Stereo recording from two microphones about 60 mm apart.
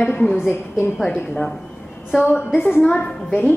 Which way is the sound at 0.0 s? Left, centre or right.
Left.